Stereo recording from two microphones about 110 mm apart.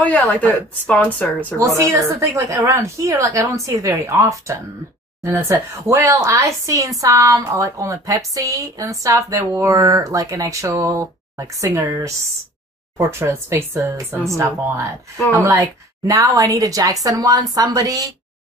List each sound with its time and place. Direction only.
0.0 s a woman's voice: 15° left (ahead or behind)
1.6 s speech: 25° right (ahead or behind)
15.3 s a woman's voice: 30° right (ahead or behind)